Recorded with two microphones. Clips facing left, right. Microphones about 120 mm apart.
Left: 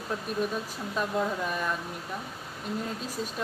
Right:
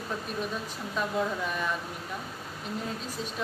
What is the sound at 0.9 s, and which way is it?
Speech, centre (ahead or behind).